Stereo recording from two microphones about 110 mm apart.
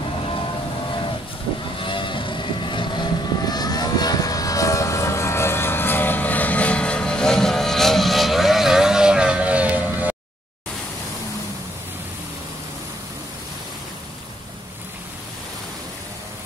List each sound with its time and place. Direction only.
0.2 s vehicle: 55° left (ahead or behind); by 10.1 s 15° right (ahead or behind)